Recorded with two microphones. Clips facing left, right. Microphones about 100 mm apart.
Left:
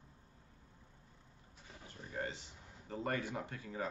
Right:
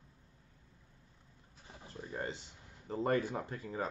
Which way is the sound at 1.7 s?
25° right (ahead or behind).